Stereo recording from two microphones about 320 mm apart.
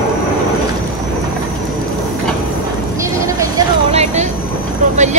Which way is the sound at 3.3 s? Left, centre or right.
Centre.